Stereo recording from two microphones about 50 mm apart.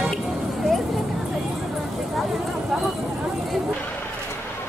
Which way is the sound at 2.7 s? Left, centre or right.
Centre.